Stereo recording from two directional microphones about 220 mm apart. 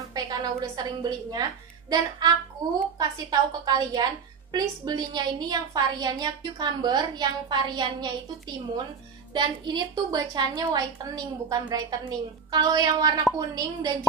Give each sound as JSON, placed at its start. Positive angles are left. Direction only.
{"t": 0.1, "sound": "a woman's voice", "side_deg": -15}